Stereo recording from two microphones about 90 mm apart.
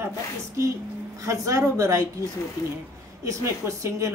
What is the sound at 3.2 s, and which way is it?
Speech, 35° right (ahead or behind).